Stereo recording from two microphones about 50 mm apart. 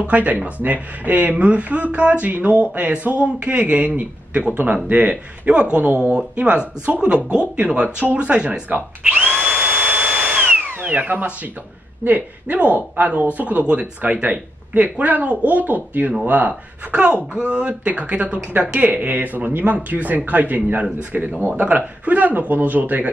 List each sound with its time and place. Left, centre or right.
0.0 s speech: right
9.4 s drill: centre
10.8 s speech: right
12.4 s speech: right